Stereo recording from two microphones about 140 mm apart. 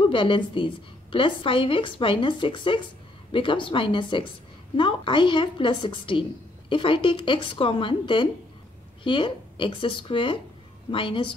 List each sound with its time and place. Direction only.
0.0 s a woman's voice: 35° left (ahead or behind)